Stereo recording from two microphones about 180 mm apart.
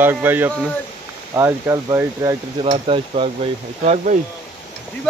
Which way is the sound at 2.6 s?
30° right (ahead or behind).